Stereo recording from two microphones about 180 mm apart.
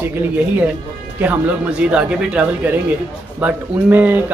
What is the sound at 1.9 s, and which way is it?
Speech, 5° right (ahead or behind).